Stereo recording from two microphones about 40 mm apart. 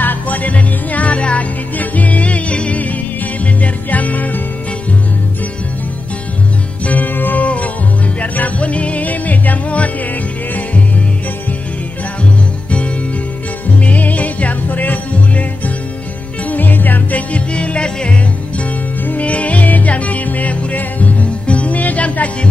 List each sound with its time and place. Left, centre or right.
0.0 s music: left
6.9 s music: left
7.4 s music: left
13.8 s music: left
17.3 s music: left
19.0 s music: left